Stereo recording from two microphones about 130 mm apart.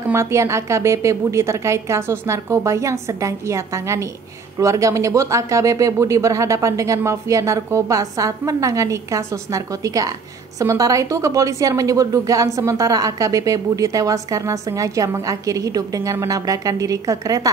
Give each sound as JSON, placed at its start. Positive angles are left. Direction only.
{"t": 0.1, "sound": "a woman's voice", "side_deg": -20}